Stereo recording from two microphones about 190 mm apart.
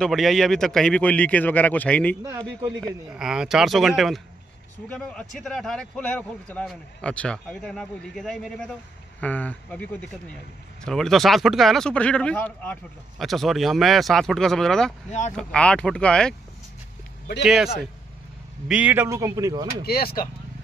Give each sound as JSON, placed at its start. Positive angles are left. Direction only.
{"t": 0.0, "sound": "a man's voice", "side_deg": 0}
{"t": 2.2, "sound": "speech", "side_deg": -20}
{"t": 2.8, "sound": "a man's voice", "side_deg": -5}
{"t": 15.0, "sound": "speech", "side_deg": 40}
{"t": 15.3, "sound": "speech", "side_deg": 5}
{"t": 17.4, "sound": "speech", "side_deg": 0}
{"t": 18.7, "sound": "speech", "side_deg": -10}
{"t": 19.8, "sound": "speech", "side_deg": 55}